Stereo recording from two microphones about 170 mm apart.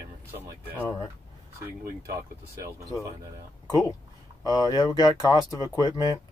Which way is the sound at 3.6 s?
25° left (ahead or behind).